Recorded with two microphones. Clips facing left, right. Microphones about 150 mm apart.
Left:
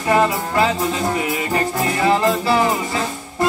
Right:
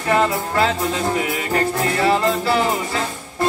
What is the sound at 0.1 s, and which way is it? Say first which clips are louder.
Music: left 1 dB; 20° left (ahead or behind).